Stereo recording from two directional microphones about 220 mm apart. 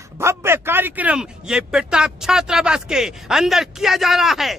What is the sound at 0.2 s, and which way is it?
A man's voice, 10° right (ahead or behind).